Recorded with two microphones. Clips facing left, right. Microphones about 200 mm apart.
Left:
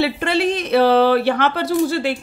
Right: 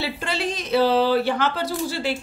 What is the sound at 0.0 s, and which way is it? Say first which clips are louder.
A woman's voice: left 8 dB; 60° left (ahead or behind).